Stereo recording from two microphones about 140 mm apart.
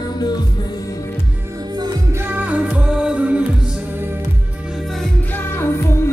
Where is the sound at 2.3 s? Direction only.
10° right (ahead or behind).